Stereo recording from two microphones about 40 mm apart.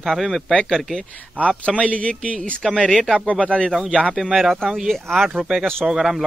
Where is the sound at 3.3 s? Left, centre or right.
Left.